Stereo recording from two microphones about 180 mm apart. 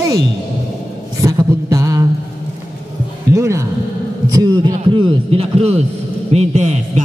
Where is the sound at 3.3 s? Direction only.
15° right (ahead or behind); by 7.0 s 40° right (ahead or behind).